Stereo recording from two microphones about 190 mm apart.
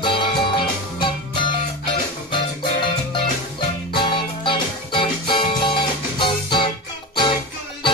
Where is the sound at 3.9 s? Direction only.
25° left (ahead or behind).